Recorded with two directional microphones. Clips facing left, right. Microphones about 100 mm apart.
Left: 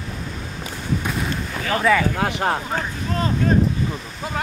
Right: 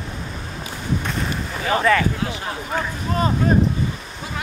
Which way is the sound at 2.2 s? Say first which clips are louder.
Left 6 dB; 65° left (ahead or behind).